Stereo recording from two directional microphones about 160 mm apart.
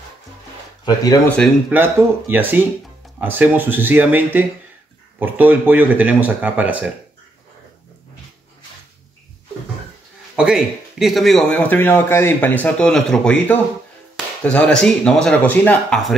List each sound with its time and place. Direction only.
0.8 s speech: 25° left (ahead or behind)
1.2 s speech: 5° left (ahead or behind)
1.7 s speech: 15° right (ahead or behind)
10.3 s speech: 5° right (ahead or behind)